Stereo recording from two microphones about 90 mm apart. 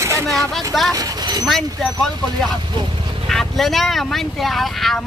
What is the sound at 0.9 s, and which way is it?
Speech, 45° right (ahead or behind).